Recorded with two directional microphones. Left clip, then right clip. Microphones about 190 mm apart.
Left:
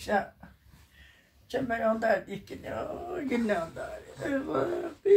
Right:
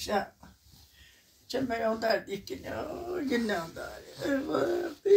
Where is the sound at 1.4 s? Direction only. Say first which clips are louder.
Left 2 dB; 15° left (ahead or behind).